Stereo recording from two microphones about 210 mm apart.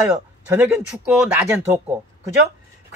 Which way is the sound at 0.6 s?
5° right (ahead or behind).